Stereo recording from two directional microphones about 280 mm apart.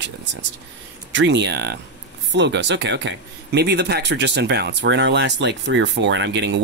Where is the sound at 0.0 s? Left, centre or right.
Right.